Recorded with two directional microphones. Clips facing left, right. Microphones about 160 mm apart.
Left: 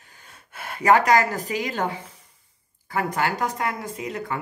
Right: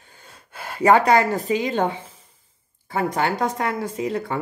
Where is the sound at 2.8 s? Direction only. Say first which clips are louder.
Right 2 dB; 25° right (ahead or behind).